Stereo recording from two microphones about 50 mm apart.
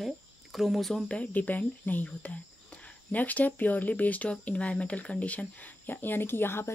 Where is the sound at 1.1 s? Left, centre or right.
Left.